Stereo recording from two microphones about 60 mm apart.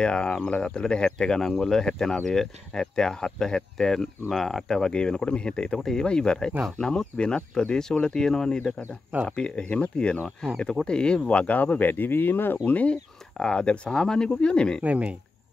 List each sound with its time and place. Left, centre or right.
0.0 s speech: centre; by 12.5 s left
12.6 s speech: left
13.4 s speech: centre
14.8 s speech: right